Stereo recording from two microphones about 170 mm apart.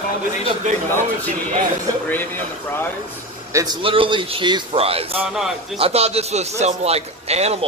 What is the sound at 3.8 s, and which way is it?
A man's voice, 30° right (ahead or behind).